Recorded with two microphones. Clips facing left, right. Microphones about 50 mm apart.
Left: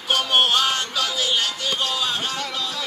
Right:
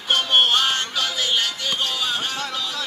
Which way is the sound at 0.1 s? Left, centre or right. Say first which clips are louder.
Right 1 dB; right.